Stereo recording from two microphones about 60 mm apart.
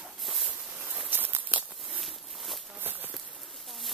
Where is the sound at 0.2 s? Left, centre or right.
Centre.